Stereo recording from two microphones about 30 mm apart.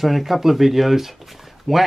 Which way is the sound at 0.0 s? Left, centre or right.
Centre.